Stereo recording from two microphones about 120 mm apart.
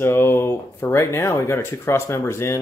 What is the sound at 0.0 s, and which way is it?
Speech, 20° left (ahead or behind).